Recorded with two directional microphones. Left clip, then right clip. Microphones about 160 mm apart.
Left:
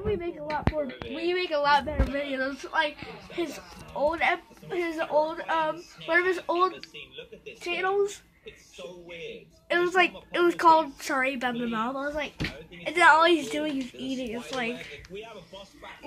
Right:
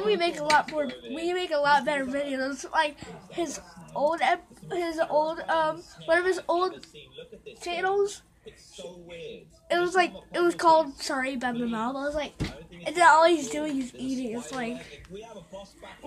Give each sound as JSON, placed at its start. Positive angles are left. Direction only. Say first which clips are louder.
{"t": 0.2, "sound": "speech", "louder": "right 8 dB", "side_deg": -25}
{"t": 1.2, "sound": "speech", "louder": "even", "side_deg": -10}
{"t": 9.7, "sound": "a woman's voice", "louder": "left 1 dB", "side_deg": -10}
{"t": 11.9, "sound": "speech", "louder": "right 1 dB", "side_deg": -15}